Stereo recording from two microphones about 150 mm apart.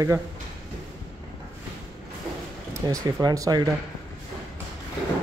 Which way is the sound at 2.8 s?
25° right (ahead or behind).